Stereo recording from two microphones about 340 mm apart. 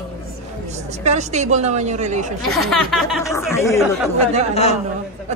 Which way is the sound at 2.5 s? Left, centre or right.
Centre.